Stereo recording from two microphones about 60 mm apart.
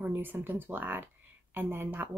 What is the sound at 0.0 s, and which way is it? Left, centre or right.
Speech, right.